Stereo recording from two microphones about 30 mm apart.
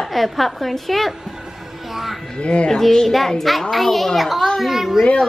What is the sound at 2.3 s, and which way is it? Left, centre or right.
Speech, left.